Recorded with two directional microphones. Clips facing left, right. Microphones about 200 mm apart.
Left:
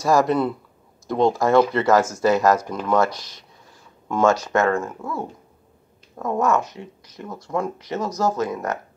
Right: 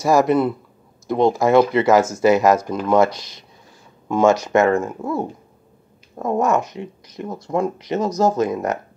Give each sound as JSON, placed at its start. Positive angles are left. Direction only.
{"t": 0.0, "sound": "speech", "side_deg": -5}
{"t": 4.1, "sound": "speech", "side_deg": -15}